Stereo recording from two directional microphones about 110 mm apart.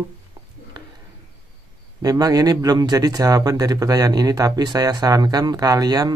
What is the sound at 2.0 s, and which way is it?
Speech, 35° right (ahead or behind).